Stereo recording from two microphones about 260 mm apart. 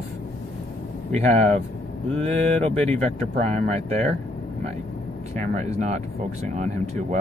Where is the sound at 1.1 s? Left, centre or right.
Right.